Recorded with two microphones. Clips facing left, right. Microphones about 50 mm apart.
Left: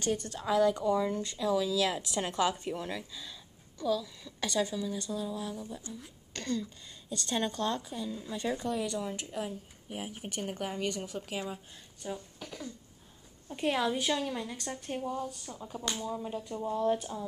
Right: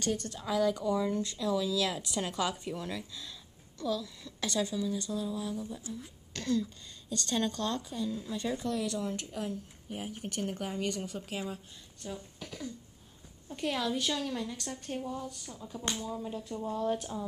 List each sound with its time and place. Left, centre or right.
0.0 s speech: centre
7.1 s speech: centre
13.5 s speech: centre